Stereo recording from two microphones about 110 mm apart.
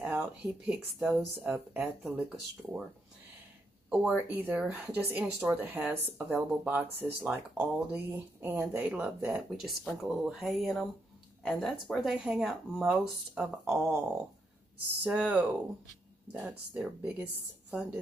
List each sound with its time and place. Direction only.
0.0 s speech: 15° right (ahead or behind)
3.9 s speech: 10° right (ahead or behind)
9.5 s speech: centre (ahead or behind)
15.0 s speech: 15° right (ahead or behind)